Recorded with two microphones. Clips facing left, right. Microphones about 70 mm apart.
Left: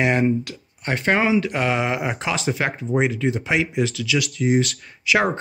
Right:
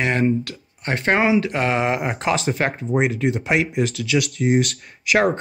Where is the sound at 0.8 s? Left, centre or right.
Right.